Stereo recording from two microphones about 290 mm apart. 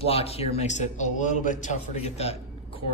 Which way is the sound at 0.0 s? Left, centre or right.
Left.